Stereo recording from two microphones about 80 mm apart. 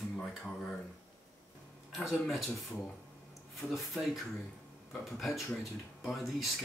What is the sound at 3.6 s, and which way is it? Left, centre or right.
Speech, centre.